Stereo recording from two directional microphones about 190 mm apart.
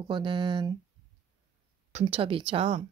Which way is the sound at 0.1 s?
25° right (ahead or behind).